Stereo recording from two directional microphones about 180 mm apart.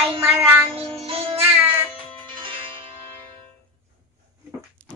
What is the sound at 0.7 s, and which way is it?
Music, 30° right (ahead or behind).